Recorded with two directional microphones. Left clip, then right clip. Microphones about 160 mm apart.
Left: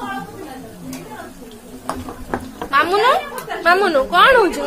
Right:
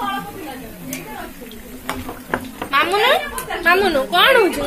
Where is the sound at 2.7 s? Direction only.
5° left (ahead or behind).